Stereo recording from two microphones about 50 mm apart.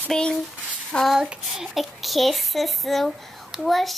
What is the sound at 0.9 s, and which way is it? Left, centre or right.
Child singing, centre.